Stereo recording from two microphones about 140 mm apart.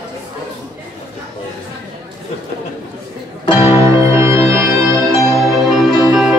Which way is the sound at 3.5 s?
35° left (ahead or behind).